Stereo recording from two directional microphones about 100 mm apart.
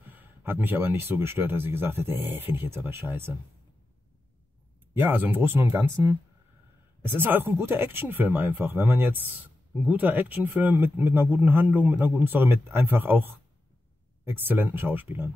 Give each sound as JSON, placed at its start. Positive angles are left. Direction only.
{"t": 0.1, "sound": "speech", "side_deg": -20}
{"t": 4.9, "sound": "speech", "side_deg": -20}
{"t": 7.0, "sound": "speech", "side_deg": -20}
{"t": 14.2, "sound": "speech", "side_deg": -20}